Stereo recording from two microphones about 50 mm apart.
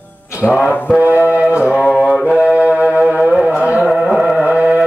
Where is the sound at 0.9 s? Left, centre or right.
Right.